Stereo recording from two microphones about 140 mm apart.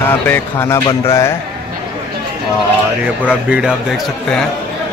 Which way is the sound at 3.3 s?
5° right (ahead or behind).